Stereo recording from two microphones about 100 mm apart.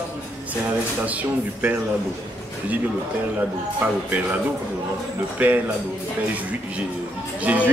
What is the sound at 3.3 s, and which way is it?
Speech, 15° right (ahead or behind).